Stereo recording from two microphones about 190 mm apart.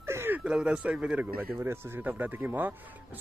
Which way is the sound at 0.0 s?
15° right (ahead or behind).